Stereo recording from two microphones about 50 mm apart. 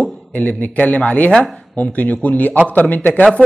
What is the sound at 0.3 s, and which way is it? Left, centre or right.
Speech, left.